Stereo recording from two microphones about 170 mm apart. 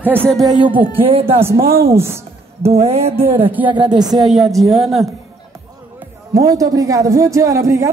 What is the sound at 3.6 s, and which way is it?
Speech, 25° right (ahead or behind).